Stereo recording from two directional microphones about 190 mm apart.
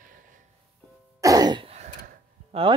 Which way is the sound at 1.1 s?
20° right (ahead or behind).